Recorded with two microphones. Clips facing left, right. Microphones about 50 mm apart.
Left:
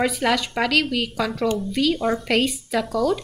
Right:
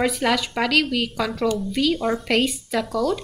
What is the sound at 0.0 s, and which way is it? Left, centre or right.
A woman's voice, centre.